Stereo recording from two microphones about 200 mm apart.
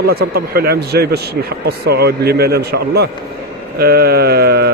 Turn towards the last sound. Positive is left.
turn(degrees=-55)  # may be behind; listen again after turning